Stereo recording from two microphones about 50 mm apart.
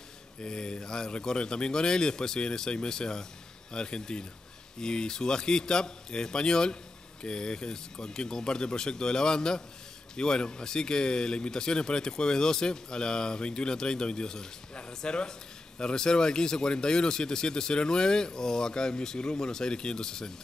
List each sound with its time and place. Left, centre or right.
0.4 s speech: centre